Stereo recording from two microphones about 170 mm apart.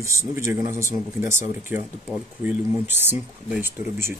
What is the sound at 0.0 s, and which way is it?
Speech, 20° right (ahead or behind).